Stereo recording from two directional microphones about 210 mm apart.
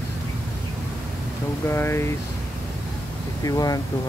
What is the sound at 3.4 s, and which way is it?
Speech, 15° left (ahead or behind).